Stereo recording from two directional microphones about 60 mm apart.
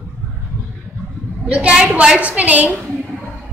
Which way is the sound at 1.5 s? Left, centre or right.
Centre.